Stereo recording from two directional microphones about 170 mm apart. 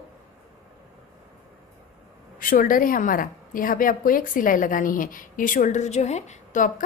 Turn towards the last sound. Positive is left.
turn(degrees=50)  # may be behind; listen again after turning